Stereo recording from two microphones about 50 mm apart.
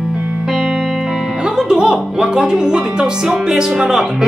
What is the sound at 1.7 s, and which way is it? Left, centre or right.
Speech, centre.